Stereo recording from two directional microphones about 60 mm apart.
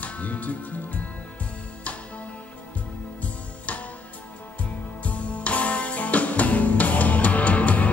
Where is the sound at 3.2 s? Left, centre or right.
Left.